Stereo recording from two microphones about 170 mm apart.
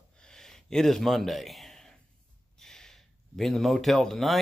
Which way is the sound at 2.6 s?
5° left (ahead or behind).